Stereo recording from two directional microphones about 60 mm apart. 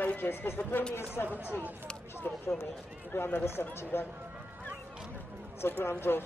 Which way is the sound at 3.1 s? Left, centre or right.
Left.